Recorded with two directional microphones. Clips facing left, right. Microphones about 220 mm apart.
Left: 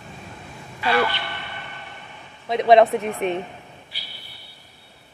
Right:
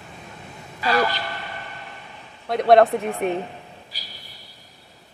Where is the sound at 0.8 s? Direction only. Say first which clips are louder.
Even; 40° right (ahead or behind).